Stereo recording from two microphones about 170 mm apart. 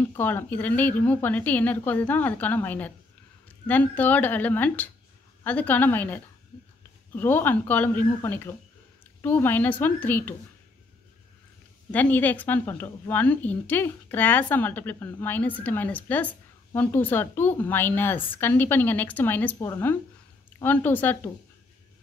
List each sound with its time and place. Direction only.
0.1 s a woman's voice: 10° left (ahead or behind)
11.9 s a woman's voice: 10° left (ahead or behind)